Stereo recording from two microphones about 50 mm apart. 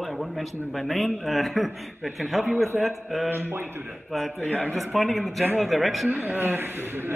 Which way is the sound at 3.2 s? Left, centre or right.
Right.